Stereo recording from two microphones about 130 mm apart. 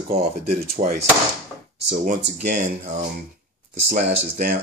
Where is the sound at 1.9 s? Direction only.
65° right (ahead or behind).